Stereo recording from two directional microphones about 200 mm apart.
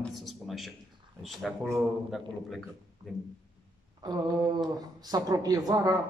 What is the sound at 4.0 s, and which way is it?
Speech, 20° right (ahead or behind).